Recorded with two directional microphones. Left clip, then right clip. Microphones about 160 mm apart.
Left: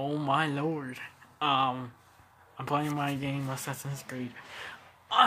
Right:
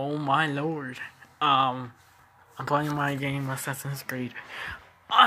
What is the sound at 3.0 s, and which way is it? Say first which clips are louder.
Speech: right 4 dB; 25° right (ahead or behind).